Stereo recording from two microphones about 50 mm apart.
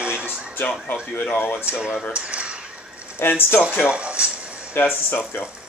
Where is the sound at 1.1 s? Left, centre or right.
Left.